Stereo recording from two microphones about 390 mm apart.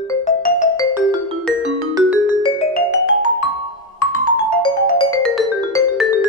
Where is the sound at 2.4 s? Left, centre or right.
Centre.